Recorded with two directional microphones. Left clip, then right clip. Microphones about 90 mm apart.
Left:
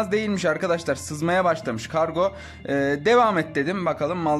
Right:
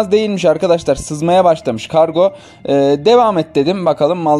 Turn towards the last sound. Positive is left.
turn(degrees=-40)  # may be behind; listen again after turning